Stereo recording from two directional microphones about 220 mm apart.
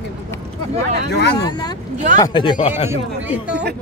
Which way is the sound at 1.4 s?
20° left (ahead or behind).